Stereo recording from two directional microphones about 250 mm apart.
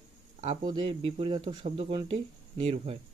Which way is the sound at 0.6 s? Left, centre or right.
Centre.